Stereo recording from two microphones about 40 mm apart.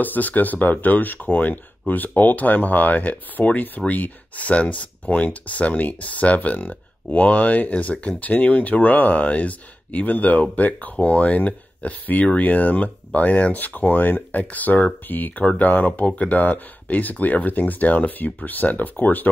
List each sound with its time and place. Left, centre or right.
0.0 s speech: left
13.6 s speech: left